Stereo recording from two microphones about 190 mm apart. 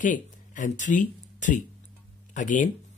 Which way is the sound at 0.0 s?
40° left (ahead or behind).